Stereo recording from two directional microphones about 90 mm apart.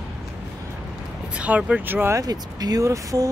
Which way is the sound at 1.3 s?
15° right (ahead or behind).